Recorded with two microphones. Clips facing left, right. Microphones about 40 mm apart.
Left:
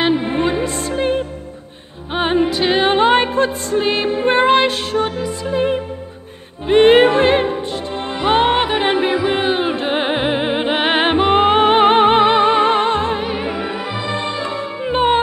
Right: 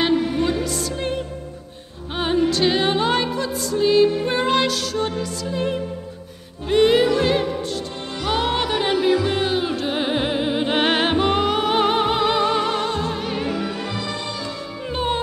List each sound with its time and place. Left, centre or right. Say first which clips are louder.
0.0 s music: left 3 dB; left
6.7 s music: left 6 dB; left
10.7 s music: left 4 dB; centre
13.3 s music: left 3 dB; left